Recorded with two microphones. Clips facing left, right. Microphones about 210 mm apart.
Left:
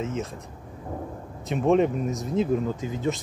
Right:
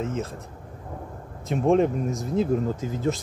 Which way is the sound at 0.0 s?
Centre (ahead or behind).